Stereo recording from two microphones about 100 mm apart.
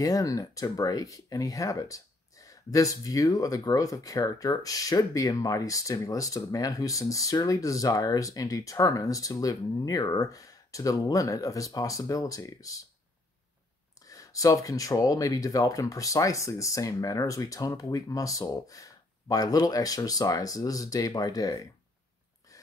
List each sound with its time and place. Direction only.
0.0 s speech: 35° left (ahead or behind)
14.0 s speech: 35° left (ahead or behind)